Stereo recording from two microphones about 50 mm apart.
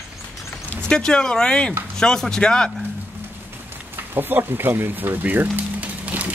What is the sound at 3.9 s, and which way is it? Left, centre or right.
Speech, right.